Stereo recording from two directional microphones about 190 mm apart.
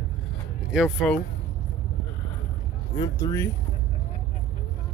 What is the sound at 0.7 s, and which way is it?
Speech, centre (ahead or behind).